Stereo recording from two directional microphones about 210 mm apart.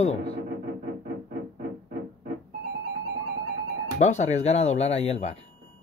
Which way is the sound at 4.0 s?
35° left (ahead or behind).